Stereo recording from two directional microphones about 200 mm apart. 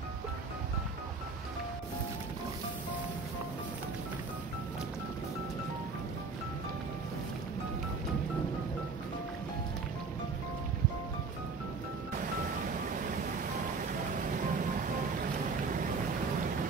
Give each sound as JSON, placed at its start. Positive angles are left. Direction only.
{"t": 14.3, "sound": "vehicle", "side_deg": -40}